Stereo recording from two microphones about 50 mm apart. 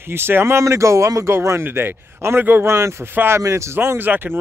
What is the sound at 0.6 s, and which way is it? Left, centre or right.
Speech, right.